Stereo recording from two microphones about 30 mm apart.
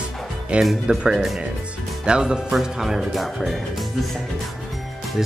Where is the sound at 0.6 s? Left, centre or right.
Centre.